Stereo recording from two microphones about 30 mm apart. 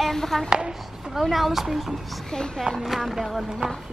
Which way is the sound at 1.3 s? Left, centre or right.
Centre.